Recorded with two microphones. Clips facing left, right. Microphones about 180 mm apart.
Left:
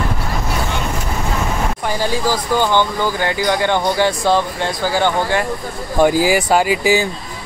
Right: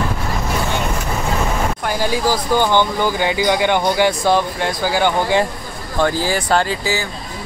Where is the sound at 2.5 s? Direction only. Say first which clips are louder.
Even; 15° right (ahead or behind).